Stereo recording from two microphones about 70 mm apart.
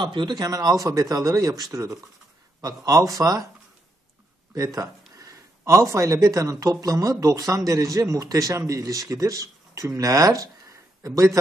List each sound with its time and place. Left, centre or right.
0.0 s speech: right
4.6 s a man's voice: right